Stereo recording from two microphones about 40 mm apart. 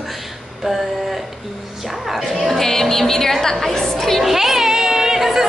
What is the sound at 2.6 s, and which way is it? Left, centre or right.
A woman's voice, centre.